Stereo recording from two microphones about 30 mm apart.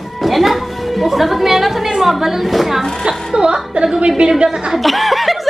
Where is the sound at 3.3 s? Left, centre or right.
Right.